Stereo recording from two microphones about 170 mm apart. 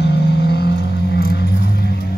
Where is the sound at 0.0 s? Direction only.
80° left.